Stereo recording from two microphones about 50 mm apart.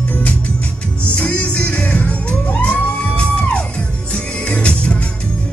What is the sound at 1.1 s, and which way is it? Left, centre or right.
Music, left.